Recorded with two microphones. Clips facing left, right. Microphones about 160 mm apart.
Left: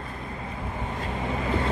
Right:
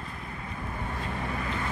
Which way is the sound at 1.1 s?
20° left (ahead or behind).